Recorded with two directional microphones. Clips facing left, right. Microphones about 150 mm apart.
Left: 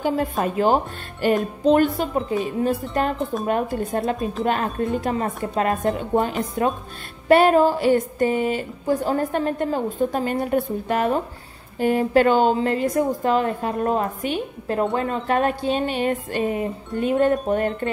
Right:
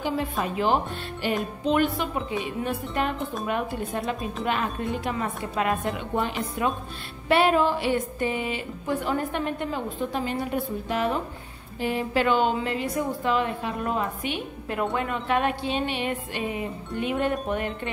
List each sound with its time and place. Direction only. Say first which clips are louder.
0.0 s a woman's voice: left 5 dB; 45° left (ahead or behind)